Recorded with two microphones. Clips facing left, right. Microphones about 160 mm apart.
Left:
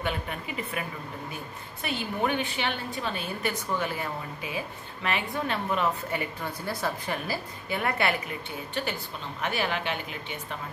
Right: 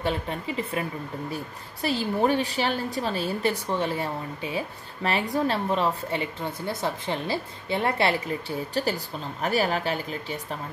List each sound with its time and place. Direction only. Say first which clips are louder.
0.0 s a woman's voice: right 4 dB; 30° right (ahead or behind)